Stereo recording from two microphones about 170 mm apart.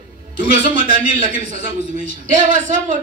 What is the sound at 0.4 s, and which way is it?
A man's voice, 50° right (ahead or behind).